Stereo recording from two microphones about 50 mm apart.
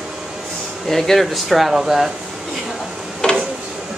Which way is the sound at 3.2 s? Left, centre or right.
Left.